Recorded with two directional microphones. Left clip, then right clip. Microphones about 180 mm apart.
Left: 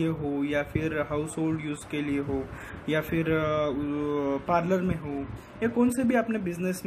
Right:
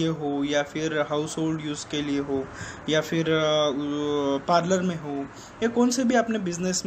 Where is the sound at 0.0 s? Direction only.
15° left (ahead or behind).